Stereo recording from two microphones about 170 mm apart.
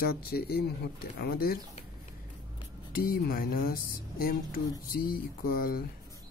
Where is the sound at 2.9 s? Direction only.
60° left (ahead or behind).